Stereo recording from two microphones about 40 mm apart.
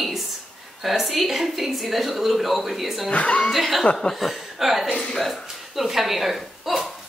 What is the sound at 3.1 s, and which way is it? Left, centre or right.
Speech, left.